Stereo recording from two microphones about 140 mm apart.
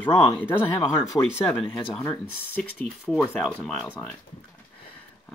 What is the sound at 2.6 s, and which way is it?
Speech, 5° left (ahead or behind).